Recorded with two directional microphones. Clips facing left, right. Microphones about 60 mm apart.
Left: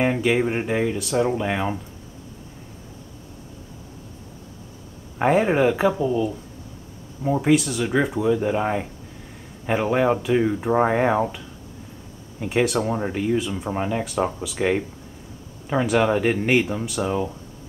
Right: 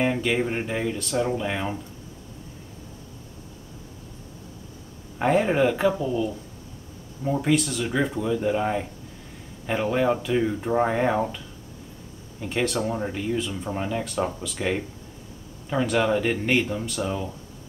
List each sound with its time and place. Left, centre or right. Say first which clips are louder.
0.0 s speech: left 3 dB; centre
5.2 s speech: left 2 dB; centre
12.4 s speech: left 4 dB; centre
14.0 s speech: left 3 dB; centre
15.7 s speech: left 3 dB; centre